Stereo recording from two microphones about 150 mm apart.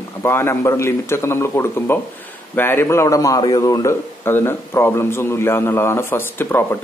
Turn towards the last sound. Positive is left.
turn(degrees=15)  # may be behind; listen again after turning